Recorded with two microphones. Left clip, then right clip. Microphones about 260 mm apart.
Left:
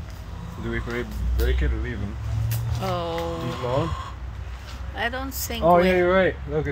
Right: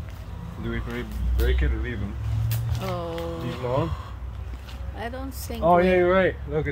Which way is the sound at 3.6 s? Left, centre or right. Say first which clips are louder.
Even; left.